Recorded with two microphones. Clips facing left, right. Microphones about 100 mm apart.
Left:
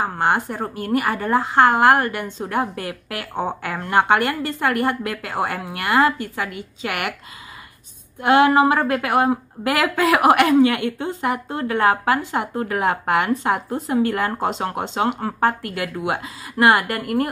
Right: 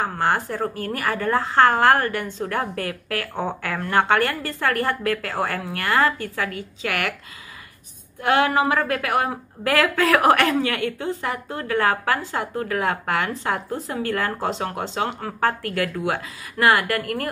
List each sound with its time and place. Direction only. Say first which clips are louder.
0.0 s a woman's voice: left 2 dB; 20° left (ahead or behind)
8.2 s a woman's voice: left 5 dB; 20° left (ahead or behind)